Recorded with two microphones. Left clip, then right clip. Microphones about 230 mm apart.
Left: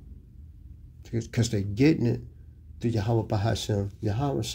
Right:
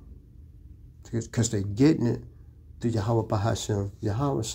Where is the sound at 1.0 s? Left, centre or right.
Centre.